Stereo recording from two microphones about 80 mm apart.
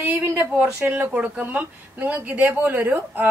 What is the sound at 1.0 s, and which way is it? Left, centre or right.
Speech, centre.